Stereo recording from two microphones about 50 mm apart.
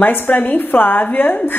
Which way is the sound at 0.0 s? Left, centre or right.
Left.